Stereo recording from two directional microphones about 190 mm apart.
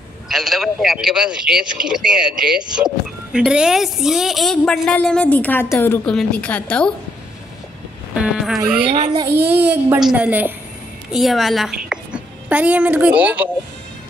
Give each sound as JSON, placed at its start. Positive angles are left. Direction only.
{"t": 0.3, "sound": "a woman's voice", "side_deg": 0}
{"t": 8.1, "sound": "speech", "side_deg": -5}
{"t": 8.8, "sound": "a child's voice", "side_deg": -20}
{"t": 9.3, "sound": "a child's voice", "side_deg": -10}